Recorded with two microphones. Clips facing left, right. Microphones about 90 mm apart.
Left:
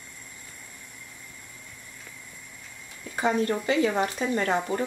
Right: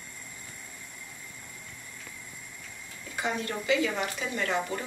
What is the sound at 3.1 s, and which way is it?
Speech, 40° left (ahead or behind).